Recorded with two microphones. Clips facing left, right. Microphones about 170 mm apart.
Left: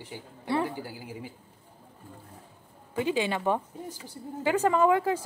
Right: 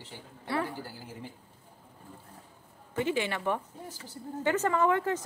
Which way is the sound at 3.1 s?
15° left (ahead or behind).